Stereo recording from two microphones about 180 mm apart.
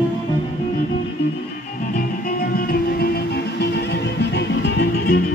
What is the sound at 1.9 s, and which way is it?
Music, 50° left (ahead or behind).